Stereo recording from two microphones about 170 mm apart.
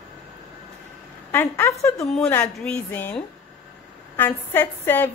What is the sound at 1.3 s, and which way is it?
A woman's voice, 10° left (ahead or behind).